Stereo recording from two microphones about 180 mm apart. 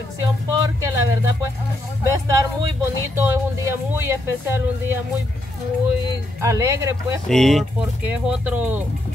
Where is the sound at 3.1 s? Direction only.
15° right (ahead or behind).